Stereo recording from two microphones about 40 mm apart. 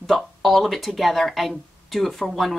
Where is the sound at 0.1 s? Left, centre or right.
Centre.